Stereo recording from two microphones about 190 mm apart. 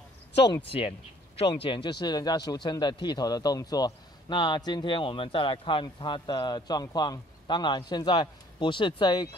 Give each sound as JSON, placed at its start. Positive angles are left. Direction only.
{"t": 0.7, "sound": "speech", "side_deg": 30}